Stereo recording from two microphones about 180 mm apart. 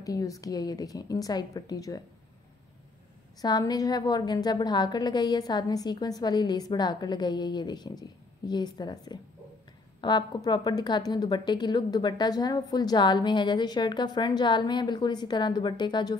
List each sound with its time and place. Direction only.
0.0 s a woman's voice: 20° left (ahead or behind)
3.3 s a woman's voice: 20° left (ahead or behind)